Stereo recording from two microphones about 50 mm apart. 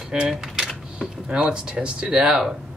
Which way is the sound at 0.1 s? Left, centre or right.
Right.